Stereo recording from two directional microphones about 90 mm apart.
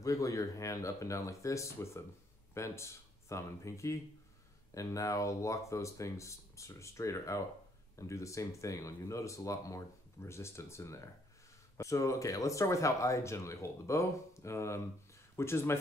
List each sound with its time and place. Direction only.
0.0 s speech: 40° left (ahead or behind)